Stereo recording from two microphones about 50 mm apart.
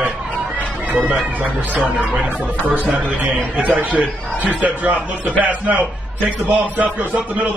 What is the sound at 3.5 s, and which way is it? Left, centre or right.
A man's voice, right.